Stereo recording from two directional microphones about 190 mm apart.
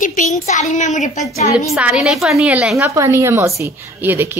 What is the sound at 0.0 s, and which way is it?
Speech, 40° left (ahead or behind).